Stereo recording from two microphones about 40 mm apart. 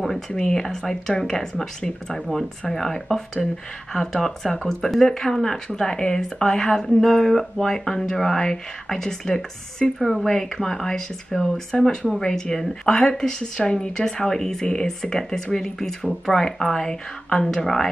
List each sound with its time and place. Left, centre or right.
0.3 s speech: centre
9.9 s speech: centre
10.2 s speech: centre